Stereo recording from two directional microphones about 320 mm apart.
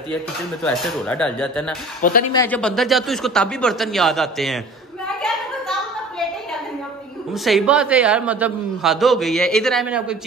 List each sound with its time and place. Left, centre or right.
0.7 s a man's voice: centre
2.0 s speech: left
2.3 s a man's voice: centre
5.0 s a sound: centre
7.4 s a man's voice: centre